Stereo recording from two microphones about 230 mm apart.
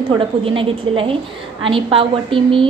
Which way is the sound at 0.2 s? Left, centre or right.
Right.